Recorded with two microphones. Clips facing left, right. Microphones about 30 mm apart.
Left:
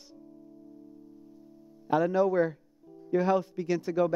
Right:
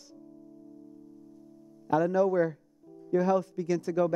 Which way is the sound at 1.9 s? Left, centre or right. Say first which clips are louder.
Even; left.